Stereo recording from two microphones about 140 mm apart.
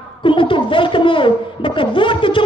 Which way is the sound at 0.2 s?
40° left (ahead or behind).